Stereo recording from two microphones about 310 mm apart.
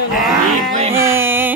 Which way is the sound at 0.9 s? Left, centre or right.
Centre.